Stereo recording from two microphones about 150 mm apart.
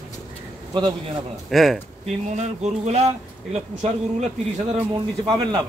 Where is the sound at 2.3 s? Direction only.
50° right (ahead or behind).